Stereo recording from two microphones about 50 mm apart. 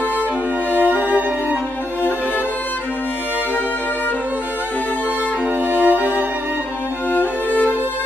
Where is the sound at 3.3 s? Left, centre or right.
Right.